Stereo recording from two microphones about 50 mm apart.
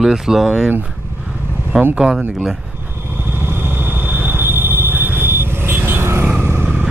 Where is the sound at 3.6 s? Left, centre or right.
Right.